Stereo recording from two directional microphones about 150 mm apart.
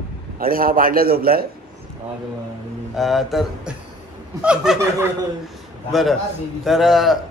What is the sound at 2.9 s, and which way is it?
Speech, centre (ahead or behind).